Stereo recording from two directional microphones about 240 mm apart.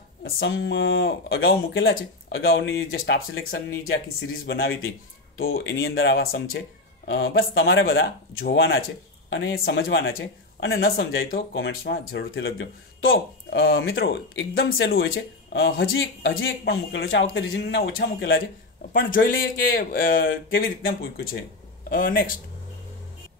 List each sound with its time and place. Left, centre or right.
0.2 s speech: left
14.9 s speech: left
18.9 s speech: left